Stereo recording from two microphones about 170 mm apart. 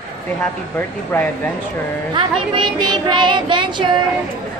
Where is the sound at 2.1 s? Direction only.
30° right (ahead or behind).